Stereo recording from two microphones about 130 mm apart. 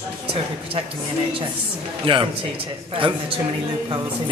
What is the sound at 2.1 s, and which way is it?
A man's voice, 45° right (ahead or behind).